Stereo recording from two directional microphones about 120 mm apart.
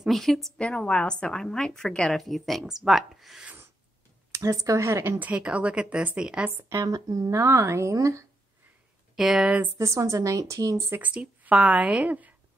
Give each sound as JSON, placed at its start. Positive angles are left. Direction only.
{"t": 0.0, "sound": "a woman's voice", "side_deg": 0}
{"t": 4.3, "sound": "speech", "side_deg": -25}
{"t": 6.5, "sound": "speech", "side_deg": -25}
{"t": 9.1, "sound": "a woman's voice", "side_deg": -5}
{"t": 9.7, "sound": "speech", "side_deg": -25}
{"t": 11.0, "sound": "speech", "side_deg": -10}